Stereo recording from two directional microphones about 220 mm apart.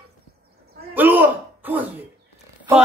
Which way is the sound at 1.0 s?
10° right (ahead or behind).